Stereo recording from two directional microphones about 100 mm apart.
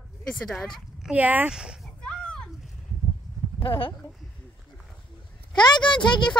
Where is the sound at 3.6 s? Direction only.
65° left (ahead or behind).